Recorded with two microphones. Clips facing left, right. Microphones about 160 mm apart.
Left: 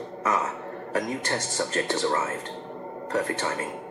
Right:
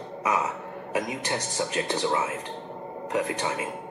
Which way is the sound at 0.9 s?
15° right (ahead or behind).